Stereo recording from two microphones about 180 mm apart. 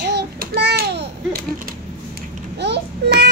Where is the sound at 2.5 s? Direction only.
70° right (ahead or behind).